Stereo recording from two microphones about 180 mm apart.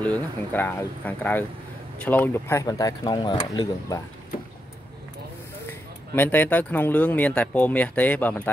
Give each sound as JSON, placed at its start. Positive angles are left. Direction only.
{"t": 0.0, "sound": "speech", "side_deg": 10}
{"t": 5.7, "sound": "speech", "side_deg": 10}